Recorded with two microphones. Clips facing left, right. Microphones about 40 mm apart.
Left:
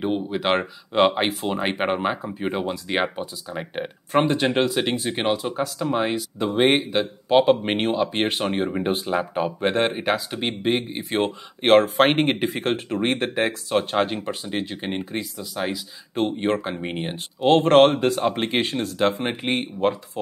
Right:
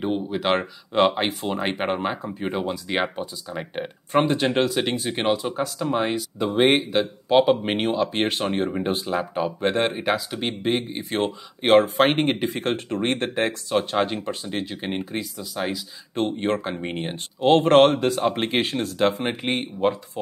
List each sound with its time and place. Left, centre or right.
0.0 s speech: centre